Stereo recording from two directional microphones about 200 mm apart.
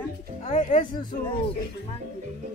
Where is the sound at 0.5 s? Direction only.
40° left (ahead or behind).